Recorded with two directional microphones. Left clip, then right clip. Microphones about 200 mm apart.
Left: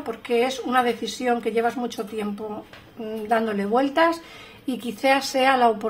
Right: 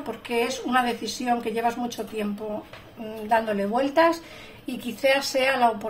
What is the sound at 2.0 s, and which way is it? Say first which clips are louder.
Speech: left 2 dB; 40° left (ahead or behind).